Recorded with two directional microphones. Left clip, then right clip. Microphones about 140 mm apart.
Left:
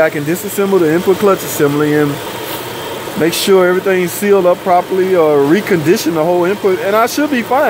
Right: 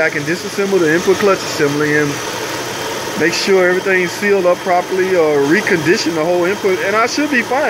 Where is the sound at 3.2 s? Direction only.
20° left (ahead or behind).